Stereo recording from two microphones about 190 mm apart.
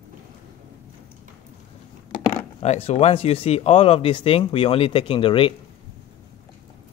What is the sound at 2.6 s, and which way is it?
Speech, 35° left (ahead or behind).